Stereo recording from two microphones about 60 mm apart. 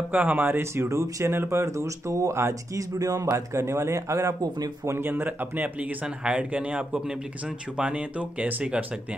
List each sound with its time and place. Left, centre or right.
0.1 s speech: right
0.8 s speech: right
1.3 s speech: right
4.8 s speech: right
6.0 s speech: centre